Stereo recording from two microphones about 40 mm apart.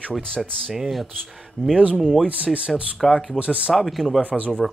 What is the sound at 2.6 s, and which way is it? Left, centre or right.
Speech, right.